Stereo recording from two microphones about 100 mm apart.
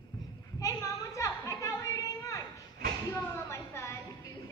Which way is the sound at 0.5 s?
35° left (ahead or behind).